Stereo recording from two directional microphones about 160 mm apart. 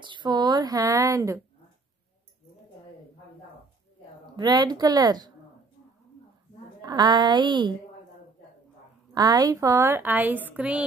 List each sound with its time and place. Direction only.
0.0 s a sound: 30° right (ahead or behind)
4.4 s a woman's voice: 25° right (ahead or behind)
6.8 s a woman's voice: 25° right (ahead or behind)
9.1 s a woman's voice: 25° right (ahead or behind); by 10.8 s 10° right (ahead or behind)